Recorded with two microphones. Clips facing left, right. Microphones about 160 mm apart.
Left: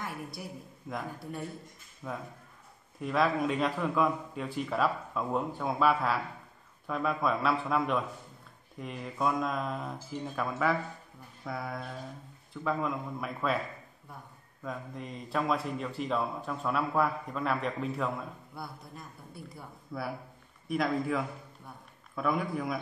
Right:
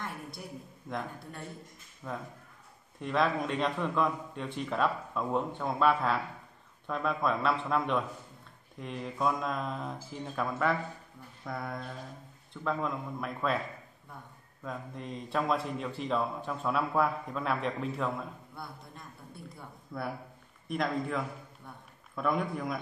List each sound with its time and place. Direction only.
0.8 s speech: 5° left (ahead or behind)
14.6 s speech: centre (ahead or behind)